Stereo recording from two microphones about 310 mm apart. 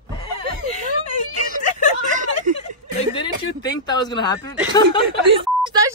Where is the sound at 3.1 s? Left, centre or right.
Centre.